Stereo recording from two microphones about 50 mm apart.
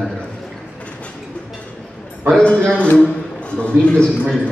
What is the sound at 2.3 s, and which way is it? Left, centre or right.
Speech, left.